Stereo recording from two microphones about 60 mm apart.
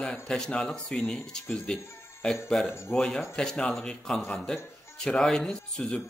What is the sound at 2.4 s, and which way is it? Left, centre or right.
Speech, centre.